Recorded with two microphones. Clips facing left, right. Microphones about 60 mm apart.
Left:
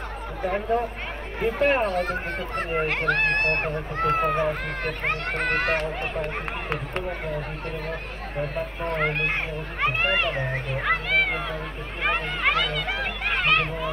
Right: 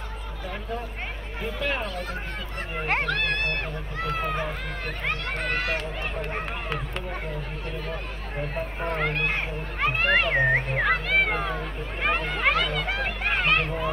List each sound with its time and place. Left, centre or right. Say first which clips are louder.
0.4 s speech: left 10 dB; left
7.2 s speech: left 3 dB; left
9.0 s speech: left 2 dB; left
9.3 s speech: left 1 dB; centre
10.3 s a child's voice: right 6 dB; right
11.3 s speech: right 1 dB; right
12.4 s speech: even; centre